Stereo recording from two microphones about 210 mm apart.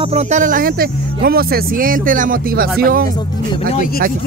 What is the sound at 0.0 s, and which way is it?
Speech, 30° right (ahead or behind).